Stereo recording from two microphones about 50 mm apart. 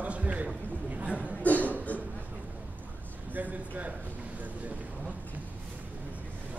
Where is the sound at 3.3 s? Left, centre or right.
Right.